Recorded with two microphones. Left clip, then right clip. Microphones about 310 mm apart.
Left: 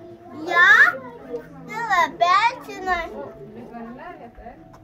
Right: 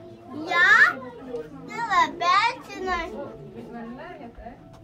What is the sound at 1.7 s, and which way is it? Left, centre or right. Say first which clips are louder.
Children playing: left 2 dB; left.